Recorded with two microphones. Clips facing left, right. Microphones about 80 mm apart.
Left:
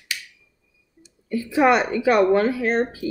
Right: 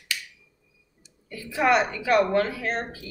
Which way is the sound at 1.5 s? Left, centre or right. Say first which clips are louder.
Left 4 dB; left.